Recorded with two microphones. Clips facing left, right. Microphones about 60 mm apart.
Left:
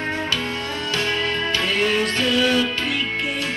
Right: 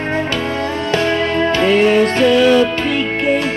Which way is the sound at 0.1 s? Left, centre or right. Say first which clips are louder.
Right 6 dB; right.